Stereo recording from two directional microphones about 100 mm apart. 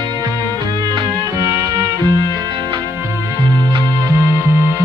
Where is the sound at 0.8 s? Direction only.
45° right (ahead or behind).